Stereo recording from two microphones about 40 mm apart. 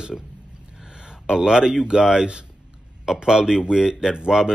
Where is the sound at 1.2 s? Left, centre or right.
Right.